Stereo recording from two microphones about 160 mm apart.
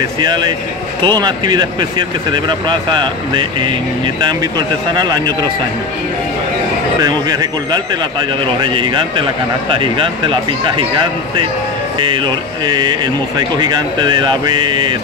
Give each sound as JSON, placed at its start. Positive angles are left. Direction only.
{"t": 0.2, "sound": "speech", "side_deg": -25}
{"t": 7.0, "sound": "a man's voice", "side_deg": -25}
{"t": 12.0, "sound": "speech", "side_deg": -30}